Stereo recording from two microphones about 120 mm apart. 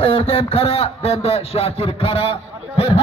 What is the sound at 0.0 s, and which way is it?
A man's voice, 55° left (ahead or behind).